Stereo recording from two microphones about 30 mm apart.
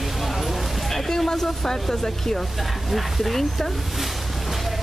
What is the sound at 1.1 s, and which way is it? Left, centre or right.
Speech, centre.